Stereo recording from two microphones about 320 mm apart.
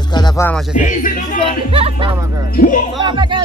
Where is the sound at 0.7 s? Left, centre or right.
Left.